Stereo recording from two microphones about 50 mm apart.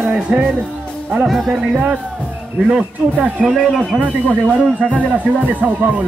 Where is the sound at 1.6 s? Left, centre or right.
Centre.